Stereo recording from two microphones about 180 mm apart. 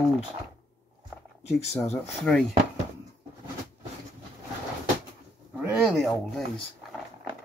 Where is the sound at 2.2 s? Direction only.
5° left (ahead or behind).